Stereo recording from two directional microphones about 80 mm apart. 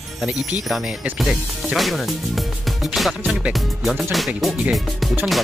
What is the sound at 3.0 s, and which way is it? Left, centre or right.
Music, centre.